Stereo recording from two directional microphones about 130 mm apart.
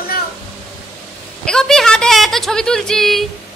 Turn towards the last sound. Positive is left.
turn(degrees=5)  # may be behind; listen again after turning